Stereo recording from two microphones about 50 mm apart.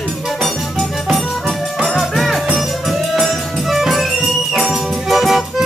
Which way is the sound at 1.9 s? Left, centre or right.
Centre.